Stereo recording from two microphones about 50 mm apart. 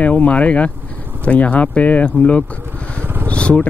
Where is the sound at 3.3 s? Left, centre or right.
Left.